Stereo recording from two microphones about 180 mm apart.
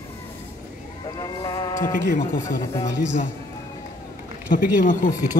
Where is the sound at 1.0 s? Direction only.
20° left (ahead or behind).